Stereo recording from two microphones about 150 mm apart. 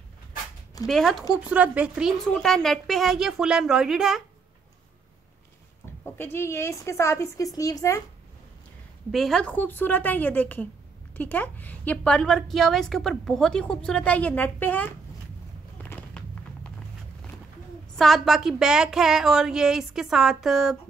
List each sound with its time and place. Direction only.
0.8 s a woman's voice: centre (ahead or behind)
1.3 s a woman's voice: 10° right (ahead or behind)
6.0 s speech: 15° left (ahead or behind)
9.1 s a woman's voice: centre (ahead or behind)
15.8 s a sound: 10° left (ahead or behind)
17.9 s a woman's voice: centre (ahead or behind)